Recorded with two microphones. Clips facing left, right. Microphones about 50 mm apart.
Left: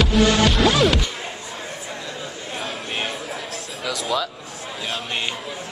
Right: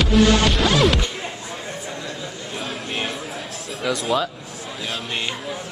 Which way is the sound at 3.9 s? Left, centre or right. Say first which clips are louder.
Right 2 dB; centre.